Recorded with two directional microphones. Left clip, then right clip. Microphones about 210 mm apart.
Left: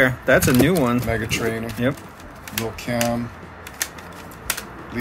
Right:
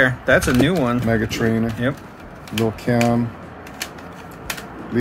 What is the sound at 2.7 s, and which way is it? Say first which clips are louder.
Speech: right 3 dB; 40° right (ahead or behind).